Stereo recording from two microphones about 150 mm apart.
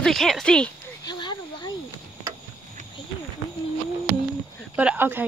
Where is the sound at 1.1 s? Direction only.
30° left (ahead or behind).